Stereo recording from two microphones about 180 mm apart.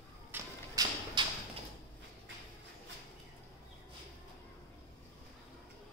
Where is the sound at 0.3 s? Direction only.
20° right (ahead or behind).